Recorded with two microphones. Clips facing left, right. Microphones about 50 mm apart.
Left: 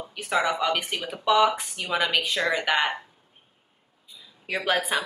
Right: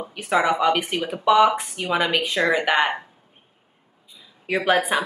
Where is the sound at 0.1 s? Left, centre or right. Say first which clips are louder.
Right 4 dB; right.